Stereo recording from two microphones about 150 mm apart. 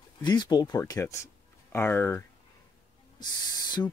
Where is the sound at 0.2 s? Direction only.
30° left (ahead or behind).